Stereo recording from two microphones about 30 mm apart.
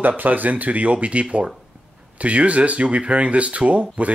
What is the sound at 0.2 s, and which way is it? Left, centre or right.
Speech, right.